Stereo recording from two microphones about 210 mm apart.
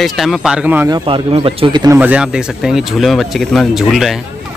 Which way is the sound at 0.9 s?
25° right (ahead or behind).